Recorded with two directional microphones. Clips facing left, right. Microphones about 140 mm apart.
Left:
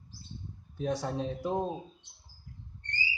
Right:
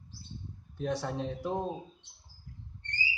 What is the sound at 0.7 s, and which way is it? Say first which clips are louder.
Speech: left 1 dB; 15° left (ahead or behind).